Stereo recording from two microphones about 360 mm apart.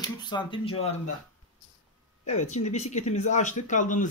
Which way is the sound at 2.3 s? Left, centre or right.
Centre.